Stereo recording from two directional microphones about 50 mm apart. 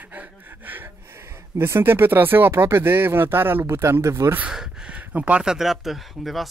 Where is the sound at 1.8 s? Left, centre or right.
Right.